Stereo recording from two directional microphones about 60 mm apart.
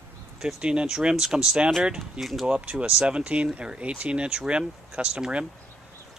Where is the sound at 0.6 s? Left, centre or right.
Centre.